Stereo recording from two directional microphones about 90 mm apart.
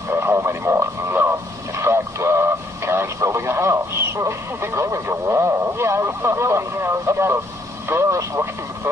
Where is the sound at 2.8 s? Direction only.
30° right (ahead or behind).